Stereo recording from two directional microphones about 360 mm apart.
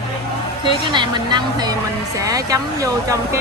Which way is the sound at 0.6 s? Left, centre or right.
Centre.